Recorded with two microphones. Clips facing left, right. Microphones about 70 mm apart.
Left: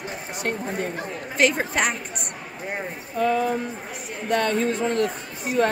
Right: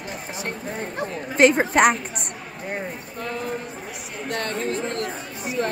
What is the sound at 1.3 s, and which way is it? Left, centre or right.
Speech, right.